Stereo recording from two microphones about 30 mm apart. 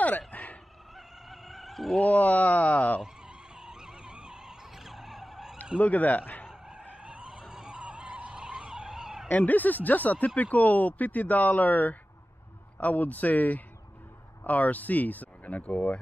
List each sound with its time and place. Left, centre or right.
0.3 s a sound: left
0.9 s cat: centre
2.0 s speech: left
3.5 s vehicle: right
4.7 s vehicle: centre
5.8 s speech: left
6.7 s skidding: right
8.4 s vehicle: right
8.7 s vehicle: right
9.3 s speech: left
12.7 s speech: left